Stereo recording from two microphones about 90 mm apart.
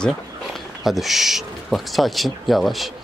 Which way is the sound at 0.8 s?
Centre (ahead or behind).